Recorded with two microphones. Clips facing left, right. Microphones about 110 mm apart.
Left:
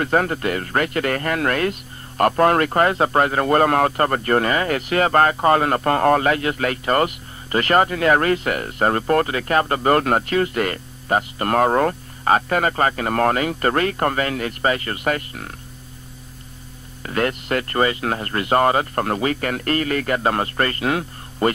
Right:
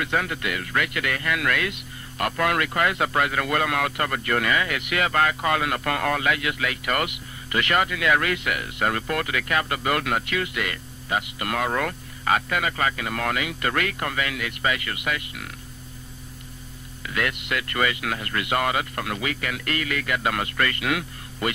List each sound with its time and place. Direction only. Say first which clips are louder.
0.0 s speech: left 7 dB; 40° left (ahead or behind)
17.0 s speech: left 6 dB; 40° left (ahead or behind)